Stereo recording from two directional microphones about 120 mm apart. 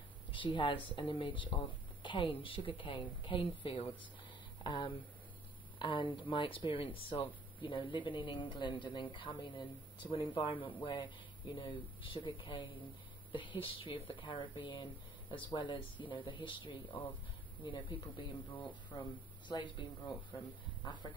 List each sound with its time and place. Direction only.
0.3 s speech: 45° left (ahead or behind)
19.4 s speech: 40° left (ahead or behind)
20.8 s speech: 40° left (ahead or behind)